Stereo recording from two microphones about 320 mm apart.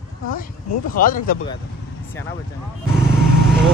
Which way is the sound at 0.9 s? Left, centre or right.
Left.